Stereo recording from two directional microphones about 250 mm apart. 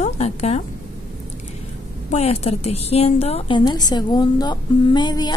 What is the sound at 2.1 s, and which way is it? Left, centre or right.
A woman's voice, left.